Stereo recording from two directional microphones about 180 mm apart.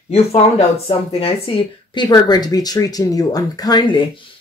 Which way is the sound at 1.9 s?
25° left (ahead or behind).